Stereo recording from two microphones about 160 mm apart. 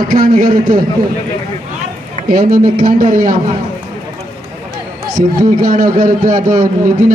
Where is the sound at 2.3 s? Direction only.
60° right (ahead or behind).